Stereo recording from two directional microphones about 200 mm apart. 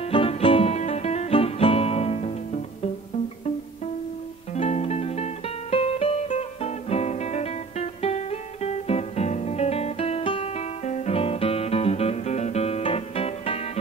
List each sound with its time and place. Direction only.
0.0 s music: 30° left (ahead or behind)
4.6 s music: 30° left (ahead or behind)